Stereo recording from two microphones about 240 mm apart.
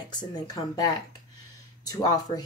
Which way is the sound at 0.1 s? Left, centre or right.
Centre.